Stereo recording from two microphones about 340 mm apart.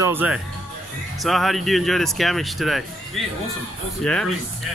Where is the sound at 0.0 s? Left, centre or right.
Centre.